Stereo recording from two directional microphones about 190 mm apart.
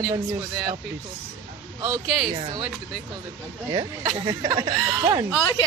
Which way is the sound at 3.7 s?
25° right (ahead or behind).